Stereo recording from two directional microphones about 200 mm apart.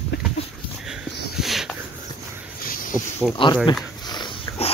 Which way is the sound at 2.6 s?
45° left (ahead or behind).